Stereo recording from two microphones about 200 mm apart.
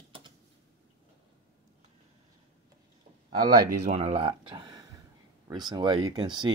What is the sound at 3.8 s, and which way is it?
Speech, 30° right (ahead or behind).